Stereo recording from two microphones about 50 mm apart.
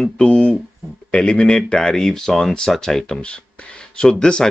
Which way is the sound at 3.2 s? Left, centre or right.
Left.